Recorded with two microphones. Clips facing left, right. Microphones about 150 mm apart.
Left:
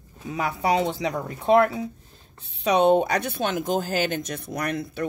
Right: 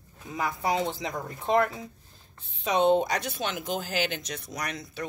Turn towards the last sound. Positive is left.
turn(degrees=55)  # may be behind; listen again after turning